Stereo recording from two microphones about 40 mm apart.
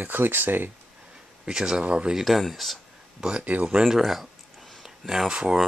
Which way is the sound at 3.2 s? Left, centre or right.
Right.